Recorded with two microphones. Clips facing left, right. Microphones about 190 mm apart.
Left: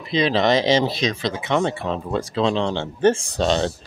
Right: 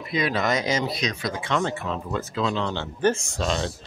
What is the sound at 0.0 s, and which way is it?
Speech, 25° left (ahead or behind).